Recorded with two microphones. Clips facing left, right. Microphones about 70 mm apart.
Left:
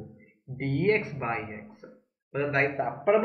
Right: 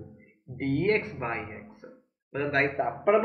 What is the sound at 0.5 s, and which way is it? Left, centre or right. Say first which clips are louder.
Speech: right 1 dB; centre.